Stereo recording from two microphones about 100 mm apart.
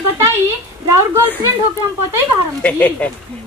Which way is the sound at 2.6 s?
15° left (ahead or behind).